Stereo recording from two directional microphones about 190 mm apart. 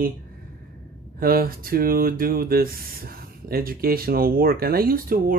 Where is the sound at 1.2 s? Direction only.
50° right (ahead or behind).